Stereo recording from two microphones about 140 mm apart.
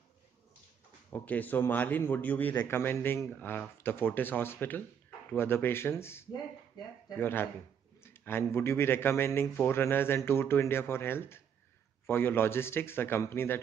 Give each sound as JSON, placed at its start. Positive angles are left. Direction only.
{"t": 1.1, "sound": "speech", "side_deg": 10}